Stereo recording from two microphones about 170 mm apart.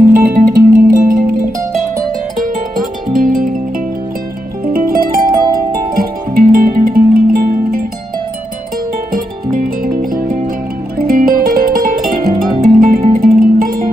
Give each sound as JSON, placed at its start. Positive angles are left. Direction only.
{"t": 0.1, "sound": "music", "side_deg": -55}
{"t": 2.7, "sound": "music", "side_deg": -55}
{"t": 4.7, "sound": "music", "side_deg": -60}
{"t": 9.1, "sound": "music", "side_deg": -55}